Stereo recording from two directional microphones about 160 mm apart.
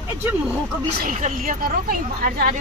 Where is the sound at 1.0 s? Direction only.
55° right (ahead or behind).